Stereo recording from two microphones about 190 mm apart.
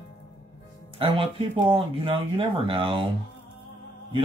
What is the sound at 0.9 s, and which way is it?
Speech, 25° right (ahead or behind).